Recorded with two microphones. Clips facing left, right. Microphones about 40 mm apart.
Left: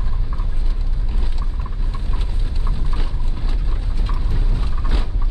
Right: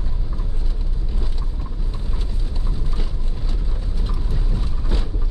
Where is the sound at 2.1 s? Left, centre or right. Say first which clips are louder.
Left 1 dB; left.